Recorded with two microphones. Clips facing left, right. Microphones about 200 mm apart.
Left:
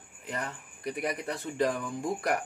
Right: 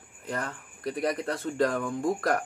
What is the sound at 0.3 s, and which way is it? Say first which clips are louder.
A man's voice: right 3 dB; 20° left (ahead or behind).